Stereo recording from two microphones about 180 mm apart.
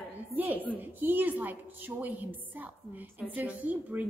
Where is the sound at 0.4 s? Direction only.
10° right (ahead or behind).